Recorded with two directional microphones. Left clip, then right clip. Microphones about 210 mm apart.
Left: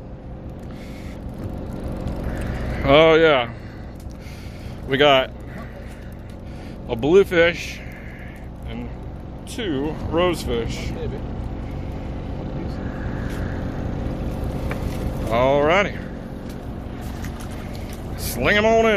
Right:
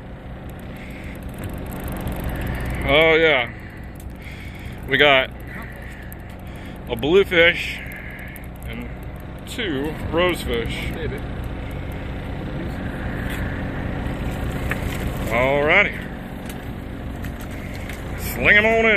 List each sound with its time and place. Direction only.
2.8 s speech: 25° left (ahead or behind)
4.8 s speech: 15° left (ahead or behind)
6.9 s speech: 10° left (ahead or behind)
9.6 s speech: 5° left (ahead or behind)
15.3 s speech: 15° left (ahead or behind)
18.4 s speech: 15° left (ahead or behind)